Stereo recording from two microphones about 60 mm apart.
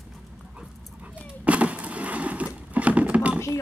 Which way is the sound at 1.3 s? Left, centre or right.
Right.